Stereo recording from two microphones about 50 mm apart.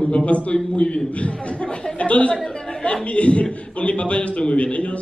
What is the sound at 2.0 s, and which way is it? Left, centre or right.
A man's voice, left.